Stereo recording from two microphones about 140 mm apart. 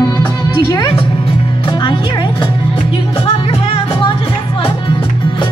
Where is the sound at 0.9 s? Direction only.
40° left (ahead or behind).